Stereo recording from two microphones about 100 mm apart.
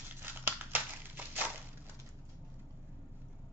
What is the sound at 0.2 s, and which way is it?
Crumpling, 20° right (ahead or behind).